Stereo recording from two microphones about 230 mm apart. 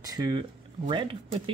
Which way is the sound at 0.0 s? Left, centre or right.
Centre.